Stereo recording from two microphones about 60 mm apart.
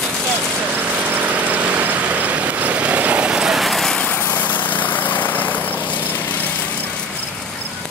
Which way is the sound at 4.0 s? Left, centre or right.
Left.